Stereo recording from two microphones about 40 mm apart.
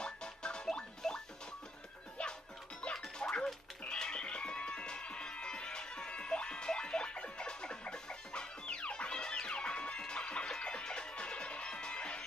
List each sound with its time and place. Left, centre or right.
0.0 s music: left
1.0 s music: centre
3.2 s music: left